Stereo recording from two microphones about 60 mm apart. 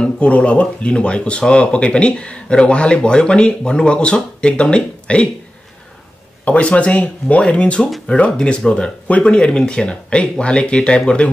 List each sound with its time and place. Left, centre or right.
0.0 s speech: centre
6.4 s speech: left